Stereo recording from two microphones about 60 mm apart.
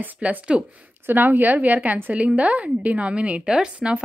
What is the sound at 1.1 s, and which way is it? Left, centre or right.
Speech, right.